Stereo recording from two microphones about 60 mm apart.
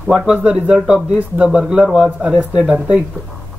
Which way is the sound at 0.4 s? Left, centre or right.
Right.